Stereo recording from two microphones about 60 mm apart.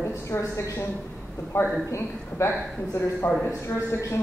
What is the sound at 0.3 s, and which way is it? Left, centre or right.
Speech, left.